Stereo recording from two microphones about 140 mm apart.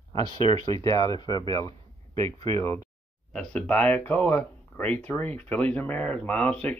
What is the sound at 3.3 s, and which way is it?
Speech, 5° left (ahead or behind).